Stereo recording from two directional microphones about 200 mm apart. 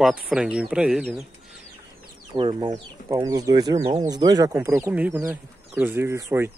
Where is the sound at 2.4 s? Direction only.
25° right (ahead or behind).